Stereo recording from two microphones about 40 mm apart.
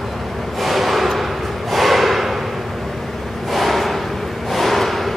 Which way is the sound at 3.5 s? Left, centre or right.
Centre.